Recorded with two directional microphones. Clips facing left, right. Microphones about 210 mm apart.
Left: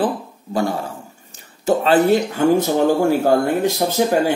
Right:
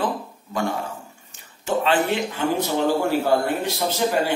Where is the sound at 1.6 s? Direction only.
40° left (ahead or behind).